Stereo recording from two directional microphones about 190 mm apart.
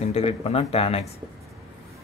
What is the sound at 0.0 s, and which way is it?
Speech, 30° left (ahead or behind).